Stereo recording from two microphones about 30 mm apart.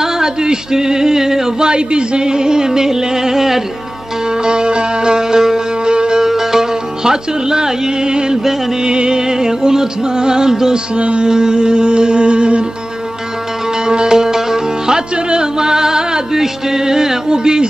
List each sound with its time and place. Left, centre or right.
0.0 s music: centre
1.6 s music: right; by 3.6 s centre
4.5 s music: right
6.2 s music: centre
11.0 s mantra: right
11.2 s music: right
13.8 s music: right
17.3 s music: right